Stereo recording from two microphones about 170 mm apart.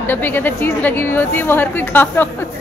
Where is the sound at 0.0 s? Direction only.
10° left (ahead or behind).